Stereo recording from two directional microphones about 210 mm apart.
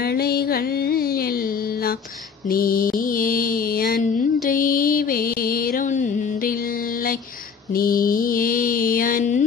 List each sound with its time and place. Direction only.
0.0 s music: 50° left (ahead or behind)
2.4 s mantra: 45° left (ahead or behind)